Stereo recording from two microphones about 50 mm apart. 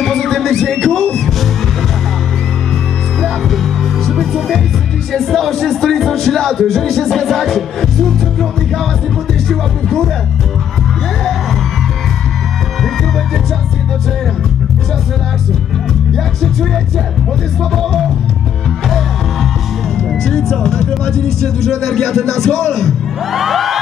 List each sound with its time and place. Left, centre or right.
0.0 s music: centre
3.2 s music: centre
20.1 s a man's voice: centre